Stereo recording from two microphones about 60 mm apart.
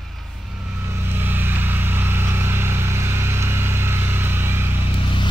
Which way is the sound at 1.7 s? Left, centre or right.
Right.